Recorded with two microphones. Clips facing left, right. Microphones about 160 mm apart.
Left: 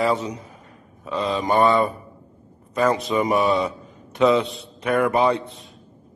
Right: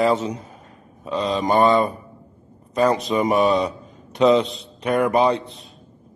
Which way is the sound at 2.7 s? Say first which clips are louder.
Right 2 dB; 35° right (ahead or behind).